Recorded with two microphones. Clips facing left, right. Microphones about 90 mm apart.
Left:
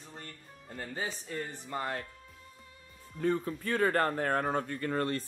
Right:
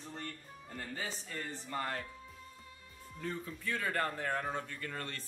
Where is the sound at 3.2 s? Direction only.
50° left (ahead or behind).